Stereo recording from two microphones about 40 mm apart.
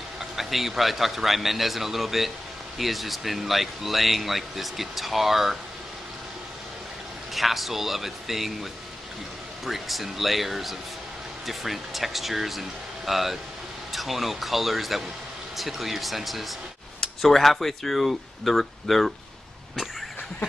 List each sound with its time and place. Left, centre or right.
0.2 s speech: centre
7.3 s speech: centre
9.7 s speech: centre